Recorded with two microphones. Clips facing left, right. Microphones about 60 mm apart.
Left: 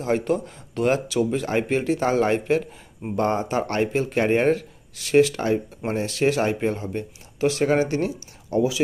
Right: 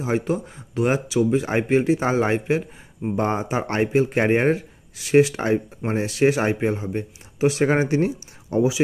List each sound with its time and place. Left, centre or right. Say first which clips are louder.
0.0 s speech: left 1 dB; centre